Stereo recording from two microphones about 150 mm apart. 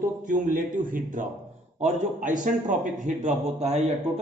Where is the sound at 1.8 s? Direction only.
55° right (ahead or behind).